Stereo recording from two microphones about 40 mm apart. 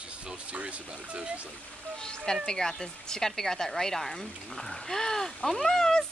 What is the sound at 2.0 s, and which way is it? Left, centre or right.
Speech, centre.